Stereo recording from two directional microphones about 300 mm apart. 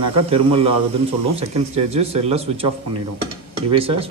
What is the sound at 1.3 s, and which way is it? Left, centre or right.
Speech, centre.